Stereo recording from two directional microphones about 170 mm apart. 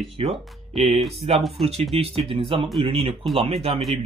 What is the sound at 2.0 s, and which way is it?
Speech, 35° right (ahead or behind).